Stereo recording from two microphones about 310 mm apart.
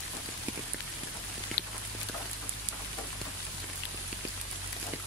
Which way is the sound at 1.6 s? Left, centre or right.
Left.